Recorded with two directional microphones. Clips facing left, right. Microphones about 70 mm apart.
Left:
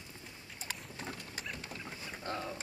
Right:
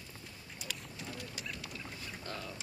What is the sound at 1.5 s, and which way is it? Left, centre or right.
Boat, left.